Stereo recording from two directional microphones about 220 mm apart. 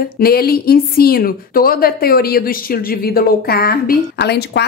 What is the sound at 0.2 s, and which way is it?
A woman's voice, 45° left (ahead or behind).